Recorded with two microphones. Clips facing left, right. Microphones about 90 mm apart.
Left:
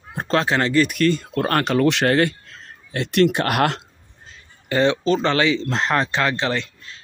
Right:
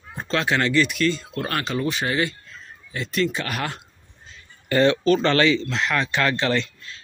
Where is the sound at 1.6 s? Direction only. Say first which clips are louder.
Left 9 dB; 60° left (ahead or behind).